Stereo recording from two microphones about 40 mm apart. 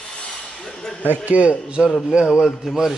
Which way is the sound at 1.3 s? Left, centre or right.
Right.